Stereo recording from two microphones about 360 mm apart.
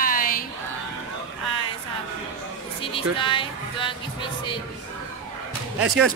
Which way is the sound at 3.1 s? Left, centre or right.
Centre.